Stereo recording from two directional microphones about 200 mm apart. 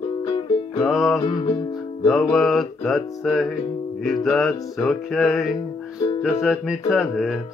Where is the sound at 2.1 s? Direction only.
Centre (ahead or behind).